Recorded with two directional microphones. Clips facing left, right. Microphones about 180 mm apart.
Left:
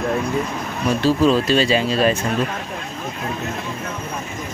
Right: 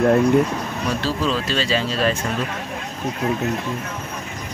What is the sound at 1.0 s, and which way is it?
Speech, 15° left (ahead or behind).